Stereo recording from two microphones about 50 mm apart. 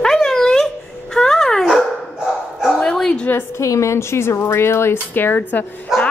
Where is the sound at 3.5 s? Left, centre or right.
Left.